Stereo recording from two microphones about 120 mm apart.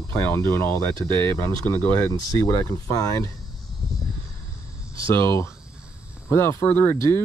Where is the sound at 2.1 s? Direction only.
30° left (ahead or behind).